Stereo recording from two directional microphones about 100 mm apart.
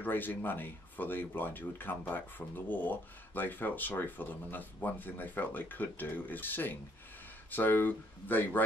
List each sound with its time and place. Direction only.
0.0 s speech: 20° left (ahead or behind)